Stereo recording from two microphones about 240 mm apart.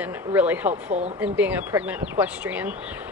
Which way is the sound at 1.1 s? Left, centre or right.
Centre.